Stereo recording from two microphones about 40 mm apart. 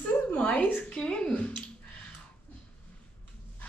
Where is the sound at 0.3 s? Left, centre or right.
Left.